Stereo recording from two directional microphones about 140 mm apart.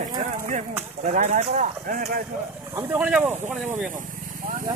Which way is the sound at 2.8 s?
10° right (ahead or behind).